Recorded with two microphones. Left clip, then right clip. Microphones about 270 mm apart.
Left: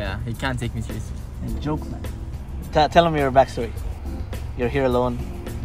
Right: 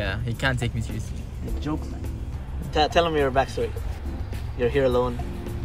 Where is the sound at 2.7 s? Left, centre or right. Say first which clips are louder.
Left 4 dB; left.